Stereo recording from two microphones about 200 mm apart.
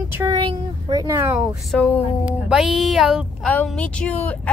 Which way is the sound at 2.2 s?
5° right (ahead or behind).